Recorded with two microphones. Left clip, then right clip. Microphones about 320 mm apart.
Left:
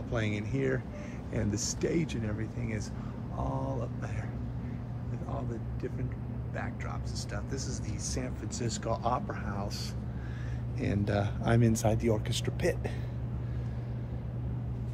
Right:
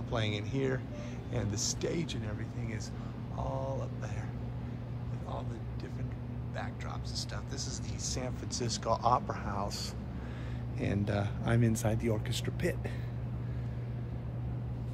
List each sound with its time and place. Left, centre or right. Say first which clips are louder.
0.1 s speech: left 1 dB; centre
8.1 s speech: right 1 dB; centre
10.8 s speech: left 3 dB; centre